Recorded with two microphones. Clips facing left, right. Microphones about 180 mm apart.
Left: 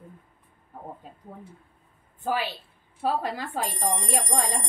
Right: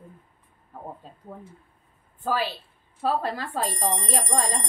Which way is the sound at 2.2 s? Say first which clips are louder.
Right 1 dB; 15° left (ahead or behind).